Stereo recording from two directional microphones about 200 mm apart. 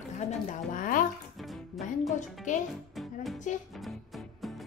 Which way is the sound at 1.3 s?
Centre (ahead or behind).